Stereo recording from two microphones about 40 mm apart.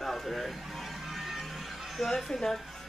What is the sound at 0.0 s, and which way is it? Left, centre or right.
Music, centre.